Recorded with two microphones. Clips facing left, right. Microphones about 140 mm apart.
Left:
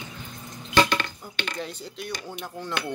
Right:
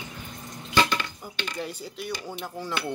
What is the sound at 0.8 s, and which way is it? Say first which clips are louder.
Dishes: left 2 dB; 65° left (ahead or behind).